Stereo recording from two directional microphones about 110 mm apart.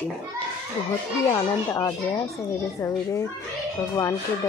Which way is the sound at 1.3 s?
30° left (ahead or behind).